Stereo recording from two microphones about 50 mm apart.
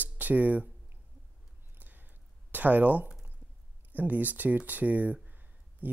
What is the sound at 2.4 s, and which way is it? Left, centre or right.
Speech, right.